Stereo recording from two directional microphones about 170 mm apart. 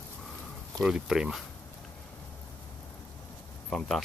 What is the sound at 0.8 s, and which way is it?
Speech, 5° right (ahead or behind).